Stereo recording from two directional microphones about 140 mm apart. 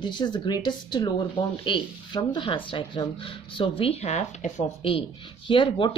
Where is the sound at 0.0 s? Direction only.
30° left (ahead or behind).